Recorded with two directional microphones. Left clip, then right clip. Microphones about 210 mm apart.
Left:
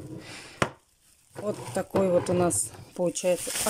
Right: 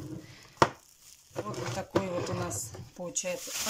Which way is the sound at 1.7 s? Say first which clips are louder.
Left 8 dB; 35° left (ahead or behind).